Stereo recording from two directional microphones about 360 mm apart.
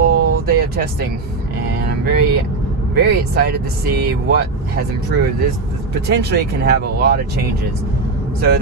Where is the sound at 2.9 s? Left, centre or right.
Right.